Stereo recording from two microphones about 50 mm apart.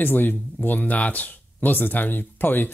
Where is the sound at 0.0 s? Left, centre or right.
Left.